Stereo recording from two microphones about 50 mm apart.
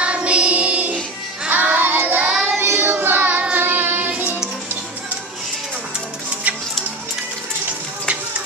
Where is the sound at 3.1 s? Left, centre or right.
Right.